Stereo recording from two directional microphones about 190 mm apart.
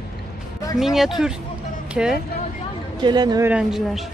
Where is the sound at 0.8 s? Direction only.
Centre (ahead or behind).